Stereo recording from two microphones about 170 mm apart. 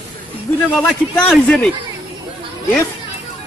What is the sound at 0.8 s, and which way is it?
Speech, 5° left (ahead or behind).